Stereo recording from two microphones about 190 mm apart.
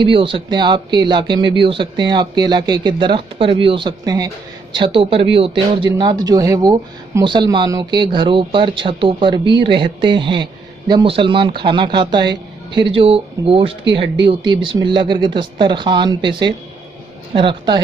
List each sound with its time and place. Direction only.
0.0 s speech: 25° right (ahead or behind)